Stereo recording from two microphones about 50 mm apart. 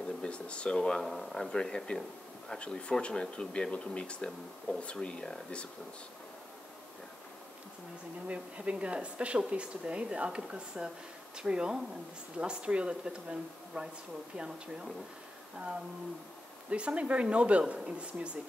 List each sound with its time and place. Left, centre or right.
0.2 s speech: left; by 1.5 s centre
1.5 s speech: centre
8.3 s speech: right
16.7 s speech: right